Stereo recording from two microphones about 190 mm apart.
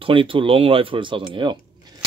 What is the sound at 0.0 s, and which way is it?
Speech, 25° right (ahead or behind).